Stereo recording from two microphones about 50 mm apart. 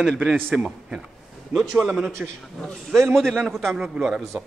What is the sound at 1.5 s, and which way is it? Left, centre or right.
Speech, centre.